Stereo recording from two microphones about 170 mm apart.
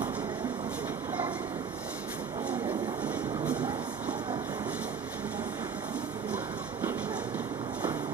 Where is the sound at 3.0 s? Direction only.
10° right (ahead or behind).